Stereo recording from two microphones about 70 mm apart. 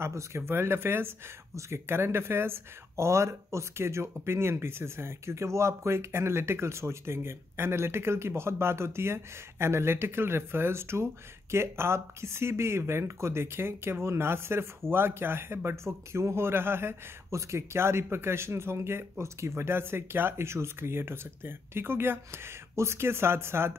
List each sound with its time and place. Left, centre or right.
0.0 s speech: right